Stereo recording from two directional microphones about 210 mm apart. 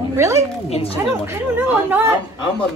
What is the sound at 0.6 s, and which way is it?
Speech, 30° left (ahead or behind).